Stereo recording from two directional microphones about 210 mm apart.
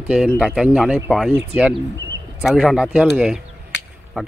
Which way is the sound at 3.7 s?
60° left (ahead or behind).